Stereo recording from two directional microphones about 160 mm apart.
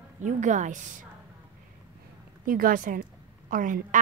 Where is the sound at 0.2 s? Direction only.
50° right (ahead or behind).